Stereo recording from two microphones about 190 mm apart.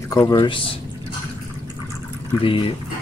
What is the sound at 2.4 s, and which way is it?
Speech, 30° left (ahead or behind).